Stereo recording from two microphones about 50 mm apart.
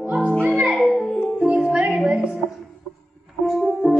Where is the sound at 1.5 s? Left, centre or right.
Right.